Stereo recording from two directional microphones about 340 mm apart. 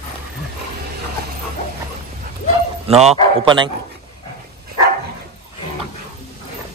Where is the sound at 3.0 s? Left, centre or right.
Centre.